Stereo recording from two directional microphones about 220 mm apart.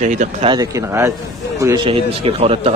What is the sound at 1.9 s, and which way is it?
Speech, 25° right (ahead or behind).